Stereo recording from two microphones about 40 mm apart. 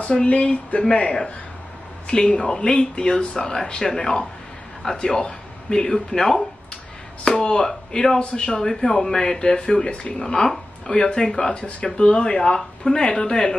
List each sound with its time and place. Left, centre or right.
0.0 s speech: left
8.6 s speech: centre
11.2 s speech: centre
11.5 s speech: left